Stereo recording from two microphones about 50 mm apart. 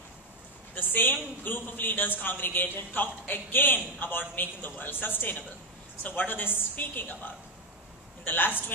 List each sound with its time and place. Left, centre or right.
0.7 s a man's voice: left